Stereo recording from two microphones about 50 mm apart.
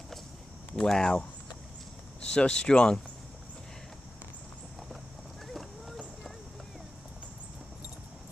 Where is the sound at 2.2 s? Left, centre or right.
Left.